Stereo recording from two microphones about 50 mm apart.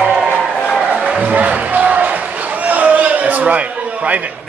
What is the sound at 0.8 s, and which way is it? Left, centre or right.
Music, right.